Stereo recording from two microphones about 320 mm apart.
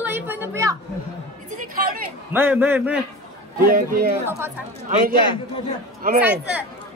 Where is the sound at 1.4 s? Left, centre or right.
Right.